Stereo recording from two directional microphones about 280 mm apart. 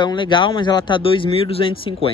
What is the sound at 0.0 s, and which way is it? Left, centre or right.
Speech, centre.